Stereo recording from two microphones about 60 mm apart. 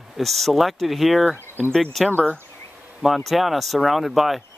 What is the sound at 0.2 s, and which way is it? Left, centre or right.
Speech, centre.